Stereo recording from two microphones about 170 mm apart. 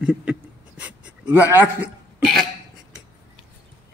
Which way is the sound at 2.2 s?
Centre (ahead or behind).